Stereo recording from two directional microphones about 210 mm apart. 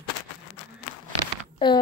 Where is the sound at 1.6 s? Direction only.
20° left (ahead or behind).